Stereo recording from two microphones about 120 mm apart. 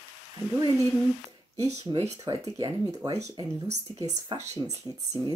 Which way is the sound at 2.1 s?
30° right (ahead or behind).